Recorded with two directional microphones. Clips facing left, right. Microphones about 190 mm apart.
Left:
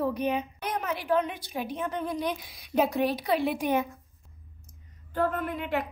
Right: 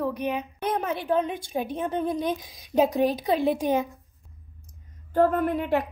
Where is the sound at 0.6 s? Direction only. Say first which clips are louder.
Right 4 dB; 30° right (ahead or behind).